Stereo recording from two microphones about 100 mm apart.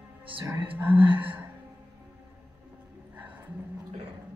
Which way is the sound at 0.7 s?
20° right (ahead or behind).